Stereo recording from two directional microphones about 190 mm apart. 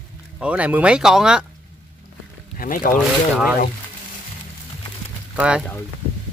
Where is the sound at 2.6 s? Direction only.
45° left (ahead or behind).